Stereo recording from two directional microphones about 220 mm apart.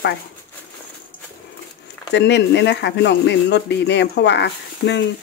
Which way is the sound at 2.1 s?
50° left (ahead or behind).